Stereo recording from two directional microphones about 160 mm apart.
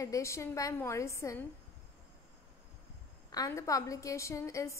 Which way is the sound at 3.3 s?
20° left (ahead or behind).